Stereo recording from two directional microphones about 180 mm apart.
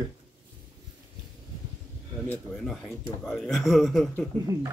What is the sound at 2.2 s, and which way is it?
A man's voice, centre (ahead or behind).